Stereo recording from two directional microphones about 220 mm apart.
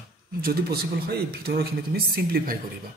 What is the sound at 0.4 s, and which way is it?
Speech, 45° right (ahead or behind).